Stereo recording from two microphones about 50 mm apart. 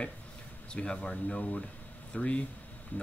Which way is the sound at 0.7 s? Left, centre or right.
Left.